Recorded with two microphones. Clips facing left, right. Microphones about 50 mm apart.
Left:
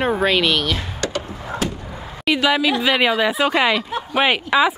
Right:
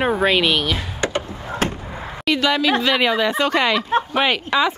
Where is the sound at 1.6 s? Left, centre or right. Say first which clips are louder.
Right 2 dB; right.